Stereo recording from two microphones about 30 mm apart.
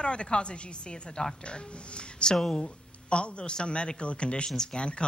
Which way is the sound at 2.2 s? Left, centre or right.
Left.